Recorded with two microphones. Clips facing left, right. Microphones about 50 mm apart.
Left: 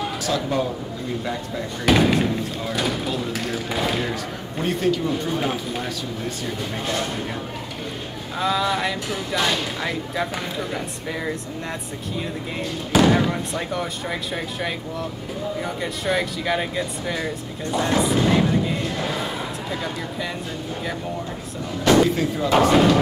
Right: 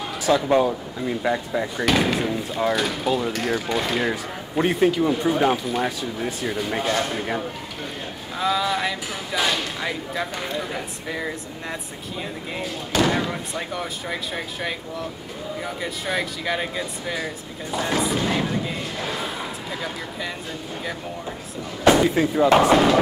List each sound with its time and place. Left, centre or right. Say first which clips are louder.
0.3 s speech: right 7 dB; centre
1.9 s speech: left 4 dB; centre
4.0 s speech: right 2 dB; centre
8.4 s speech: left 1 dB; centre
12.9 s speech: left 4 dB; centre
21.9 s speech: even; centre
22.6 s speech: even; centre